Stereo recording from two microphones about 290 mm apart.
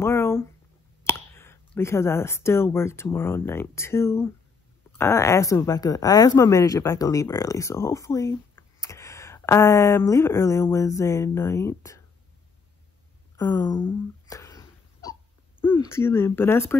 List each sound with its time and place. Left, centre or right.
0.0 s a sound: centre
1.0 s speech: centre
13.4 s hiccup: centre
15.6 s speech: centre